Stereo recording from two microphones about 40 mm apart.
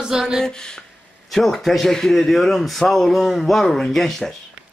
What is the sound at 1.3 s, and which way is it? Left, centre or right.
A man's voice, centre.